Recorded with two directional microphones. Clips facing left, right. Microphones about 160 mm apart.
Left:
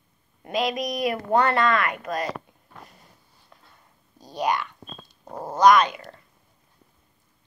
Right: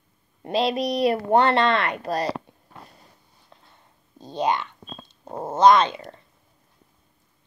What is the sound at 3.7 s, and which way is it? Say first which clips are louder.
Dog: right 4 dB; 25° right (ahead or behind).